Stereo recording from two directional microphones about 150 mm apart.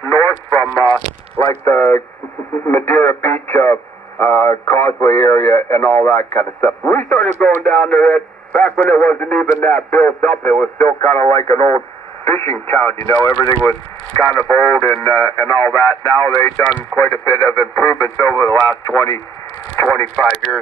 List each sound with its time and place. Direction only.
0.0 s radio: 20° left (ahead or behind)
1.6 s a sound: 10° left (ahead or behind)
2.6 s radio: 10° left (ahead or behind)
7.4 s speech: centre (ahead or behind)
11.1 s speech: 15° left (ahead or behind)
20.5 s speech: 5° right (ahead or behind)